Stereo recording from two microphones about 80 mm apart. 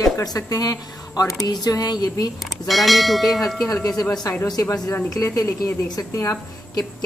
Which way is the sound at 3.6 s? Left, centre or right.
Left.